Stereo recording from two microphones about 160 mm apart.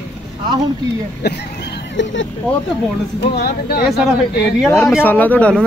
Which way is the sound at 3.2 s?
90° left.